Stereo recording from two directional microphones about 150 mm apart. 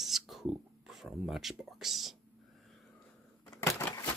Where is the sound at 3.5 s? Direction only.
25° left (ahead or behind).